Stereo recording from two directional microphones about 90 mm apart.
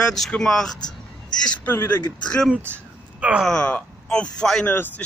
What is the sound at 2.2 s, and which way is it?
Speech, 10° left (ahead or behind).